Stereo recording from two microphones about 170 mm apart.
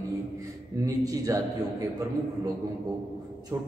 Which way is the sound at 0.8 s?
20° right (ahead or behind).